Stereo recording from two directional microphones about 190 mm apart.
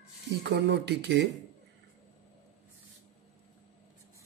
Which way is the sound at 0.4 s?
65° right (ahead or behind).